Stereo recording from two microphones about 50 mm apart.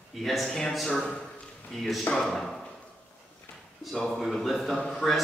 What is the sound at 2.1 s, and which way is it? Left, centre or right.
Speech, centre.